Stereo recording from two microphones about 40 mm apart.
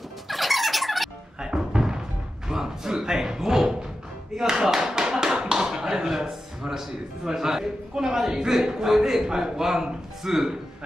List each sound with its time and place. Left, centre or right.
0.3 s music: centre
1.4 s music: centre
2.4 s a sound: centre
4.4 s tap: centre
5.8 s a man's voice: centre